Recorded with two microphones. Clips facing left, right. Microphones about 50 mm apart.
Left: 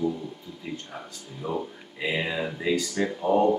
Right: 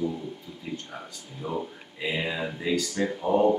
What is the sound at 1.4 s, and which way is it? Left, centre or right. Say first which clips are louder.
Speech: left 1 dB; centre.